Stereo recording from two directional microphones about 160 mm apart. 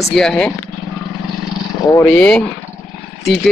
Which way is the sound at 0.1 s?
5° left (ahead or behind).